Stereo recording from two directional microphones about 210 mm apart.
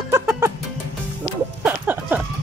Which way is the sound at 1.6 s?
10° right (ahead or behind).